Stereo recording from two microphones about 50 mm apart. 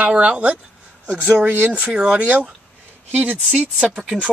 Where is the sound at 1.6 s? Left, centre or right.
Right.